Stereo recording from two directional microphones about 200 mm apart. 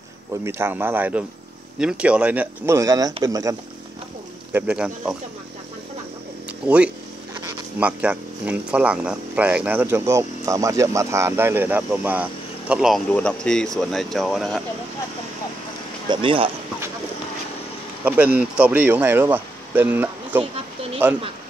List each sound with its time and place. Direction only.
0.4 s speech: 15° right (ahead or behind)
6.6 s speech: 5° right (ahead or behind)
16.1 s speech: 25° right (ahead or behind)
18.0 s speech: 10° right (ahead or behind)